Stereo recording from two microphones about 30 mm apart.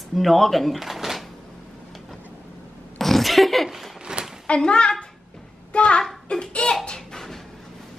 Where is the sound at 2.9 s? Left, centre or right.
Centre.